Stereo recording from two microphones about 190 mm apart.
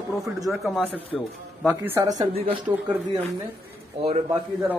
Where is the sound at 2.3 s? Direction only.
30° right (ahead or behind).